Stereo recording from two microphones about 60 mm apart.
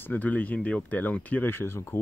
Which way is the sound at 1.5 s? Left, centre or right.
Left.